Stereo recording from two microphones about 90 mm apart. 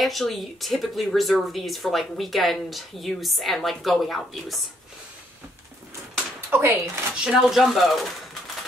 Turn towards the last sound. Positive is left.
turn(degrees=0)  # may be behind; listen again after turning